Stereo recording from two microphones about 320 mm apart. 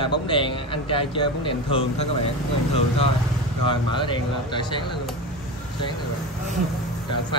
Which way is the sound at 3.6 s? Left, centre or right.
Centre.